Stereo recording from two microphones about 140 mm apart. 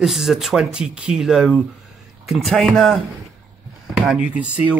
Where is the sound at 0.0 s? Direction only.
Centre (ahead or behind).